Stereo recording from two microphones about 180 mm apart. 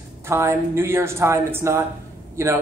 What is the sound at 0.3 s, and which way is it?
A man's voice, 15° right (ahead or behind).